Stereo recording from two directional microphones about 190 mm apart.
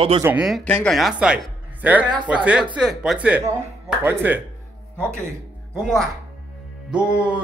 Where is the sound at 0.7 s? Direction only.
5° left (ahead or behind); by 4.4 s 10° right (ahead or behind).